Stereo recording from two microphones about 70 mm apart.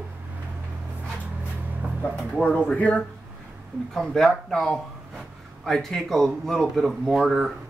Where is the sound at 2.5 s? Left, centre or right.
Centre.